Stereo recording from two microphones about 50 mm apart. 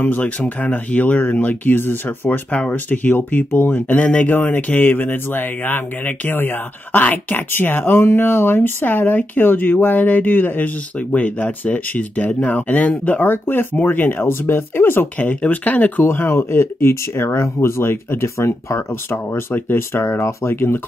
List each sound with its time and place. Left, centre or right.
0.0 s speech: left
3.9 s speech: left
4.3 s speech: left
7.5 s speech: left
16.1 s speech: left
19.5 s speech: left